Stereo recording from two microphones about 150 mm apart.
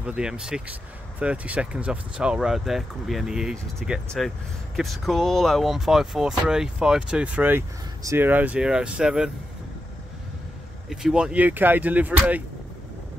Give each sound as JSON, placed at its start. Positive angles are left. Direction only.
{"t": 0.0, "sound": "speech", "side_deg": -5}
{"t": 10.9, "sound": "speech", "side_deg": -5}